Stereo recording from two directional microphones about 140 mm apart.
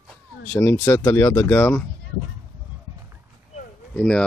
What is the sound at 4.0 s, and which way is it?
Speech, 5° left (ahead or behind).